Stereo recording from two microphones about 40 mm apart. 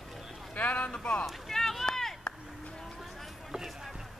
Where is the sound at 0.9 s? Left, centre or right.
Left.